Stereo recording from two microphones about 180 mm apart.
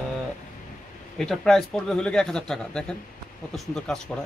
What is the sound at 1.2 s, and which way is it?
Speech, centre (ahead or behind).